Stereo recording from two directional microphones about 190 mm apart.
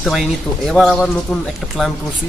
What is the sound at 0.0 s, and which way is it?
Speech, centre (ahead or behind).